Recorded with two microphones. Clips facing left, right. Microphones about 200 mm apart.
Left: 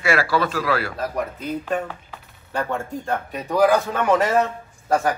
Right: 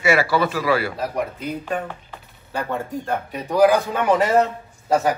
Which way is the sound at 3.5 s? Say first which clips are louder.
Right 2 dB; 15° right (ahead or behind).